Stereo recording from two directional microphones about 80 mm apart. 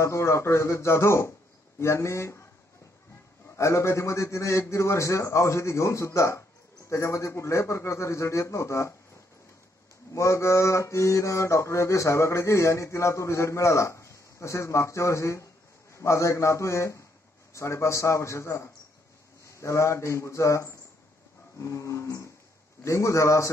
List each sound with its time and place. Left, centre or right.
0.0 s mantra: left
3.5 s mantra: left
10.1 s mantra: left